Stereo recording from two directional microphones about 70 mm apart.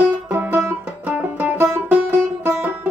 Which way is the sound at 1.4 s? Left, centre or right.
Centre.